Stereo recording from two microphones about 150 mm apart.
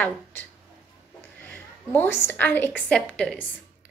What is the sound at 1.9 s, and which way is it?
A woman's voice, 15° left (ahead or behind).